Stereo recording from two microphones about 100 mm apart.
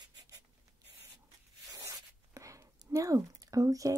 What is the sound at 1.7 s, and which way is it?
Writing, 35° right (ahead or behind).